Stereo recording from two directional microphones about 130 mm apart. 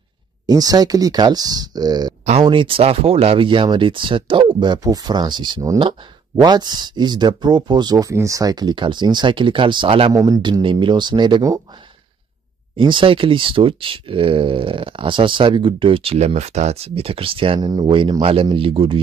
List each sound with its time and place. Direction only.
0.5 s speech: 30° right (ahead or behind)
10.1 s speech: 25° right (ahead or behind)
10.6 s speech: 40° right (ahead or behind)
12.7 s speech: 40° right (ahead or behind)
17.6 s speech: 30° right (ahead or behind)